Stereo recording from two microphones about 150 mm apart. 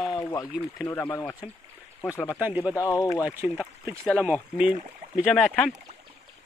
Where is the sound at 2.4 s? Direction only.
10° right (ahead or behind).